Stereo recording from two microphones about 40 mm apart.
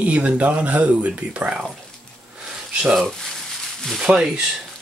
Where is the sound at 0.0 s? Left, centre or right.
Right.